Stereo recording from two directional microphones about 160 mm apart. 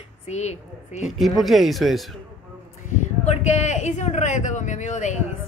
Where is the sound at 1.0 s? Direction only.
Centre (ahead or behind).